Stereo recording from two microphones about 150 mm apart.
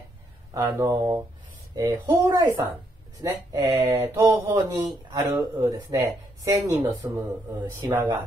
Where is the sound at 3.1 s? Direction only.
25° right (ahead or behind).